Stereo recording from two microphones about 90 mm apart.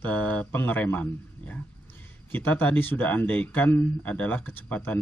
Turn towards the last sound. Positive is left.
turn(degrees=20)  # may be behind; listen again after turning